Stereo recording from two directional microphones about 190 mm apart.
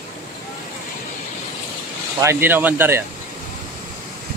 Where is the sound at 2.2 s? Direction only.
15° right (ahead or behind).